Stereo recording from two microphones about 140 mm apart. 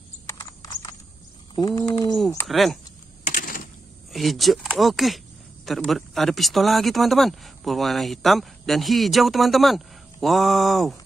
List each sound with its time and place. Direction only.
0.3 s clip-clop: 25° left (ahead or behind)
1.5 s bird: 30° left (ahead or behind)
2.4 s speech: centre (ahead or behind)
3.3 s typewriter: 80° left
4.1 s speech: centre (ahead or behind)